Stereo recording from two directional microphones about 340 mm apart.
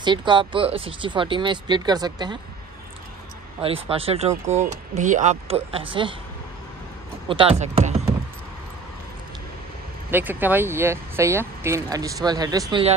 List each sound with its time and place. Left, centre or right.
0.0 s speech: centre
3.6 s speech: centre
7.2 s speech: centre
10.1 s speech: centre